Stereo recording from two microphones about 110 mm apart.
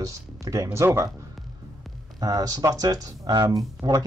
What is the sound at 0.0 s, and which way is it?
Speech, 30° right (ahead or behind).